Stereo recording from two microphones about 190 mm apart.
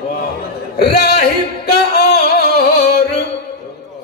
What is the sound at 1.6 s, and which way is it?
Music, 60° left (ahead or behind).